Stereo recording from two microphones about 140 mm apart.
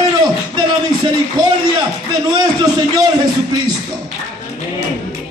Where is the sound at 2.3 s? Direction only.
30° right (ahead or behind).